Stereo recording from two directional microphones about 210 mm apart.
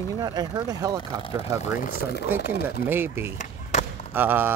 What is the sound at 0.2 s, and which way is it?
Speech, 20° right (ahead or behind).